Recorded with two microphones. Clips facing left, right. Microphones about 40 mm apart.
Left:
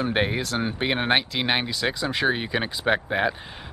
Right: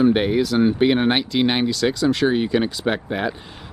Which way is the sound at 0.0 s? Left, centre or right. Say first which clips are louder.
Right 7 dB; centre.